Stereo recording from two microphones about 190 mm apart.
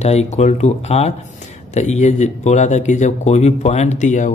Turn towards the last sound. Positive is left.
turn(degrees=40)  # may be behind; listen again after turning